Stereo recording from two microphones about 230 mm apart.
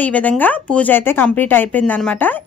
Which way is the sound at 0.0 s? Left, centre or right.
Centre.